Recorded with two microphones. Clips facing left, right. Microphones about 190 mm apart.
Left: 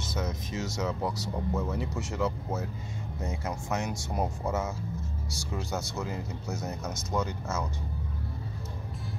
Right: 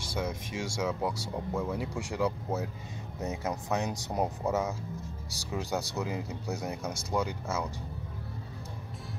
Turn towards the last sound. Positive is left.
turn(degrees=-10)  # may be behind; listen again after turning